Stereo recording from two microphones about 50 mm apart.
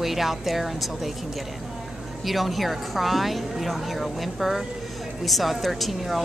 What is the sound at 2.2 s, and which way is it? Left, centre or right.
Speech, centre.